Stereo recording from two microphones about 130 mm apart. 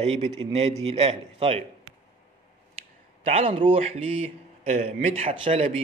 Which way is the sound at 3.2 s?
50° right (ahead or behind).